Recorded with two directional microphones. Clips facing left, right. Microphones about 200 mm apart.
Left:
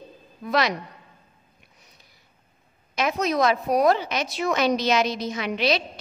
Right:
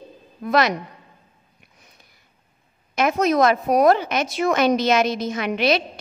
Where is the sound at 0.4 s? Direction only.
50° right (ahead or behind).